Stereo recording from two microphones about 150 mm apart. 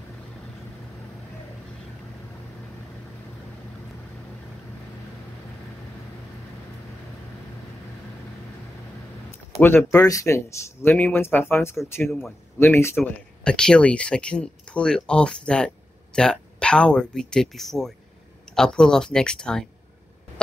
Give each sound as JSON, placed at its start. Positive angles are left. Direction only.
{"t": 9.6, "sound": "speech", "side_deg": 15}